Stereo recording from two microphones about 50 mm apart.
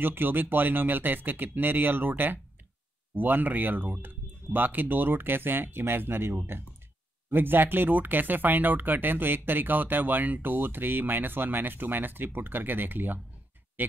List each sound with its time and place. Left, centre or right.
0.0 s speech: right